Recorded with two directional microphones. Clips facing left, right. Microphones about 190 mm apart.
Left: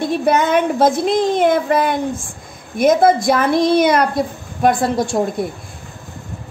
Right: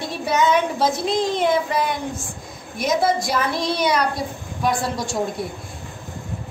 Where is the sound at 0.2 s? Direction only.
55° left (ahead or behind).